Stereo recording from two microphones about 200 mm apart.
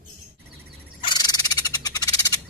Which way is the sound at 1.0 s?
20° left (ahead or behind).